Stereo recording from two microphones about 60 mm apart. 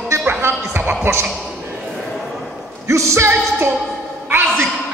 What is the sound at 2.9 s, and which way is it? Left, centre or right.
A man's voice, right.